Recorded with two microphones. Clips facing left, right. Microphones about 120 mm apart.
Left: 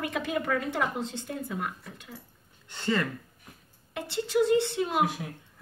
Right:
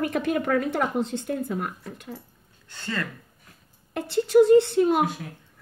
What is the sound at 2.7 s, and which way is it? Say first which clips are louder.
Speech: left 3 dB; 20° left (ahead or behind).